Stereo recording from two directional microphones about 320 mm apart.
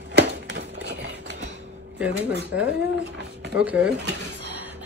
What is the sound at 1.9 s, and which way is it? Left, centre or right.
Speech, centre.